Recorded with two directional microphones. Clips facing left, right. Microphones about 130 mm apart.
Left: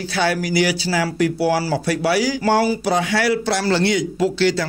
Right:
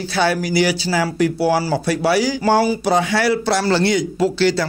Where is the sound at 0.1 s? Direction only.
30° right (ahead or behind).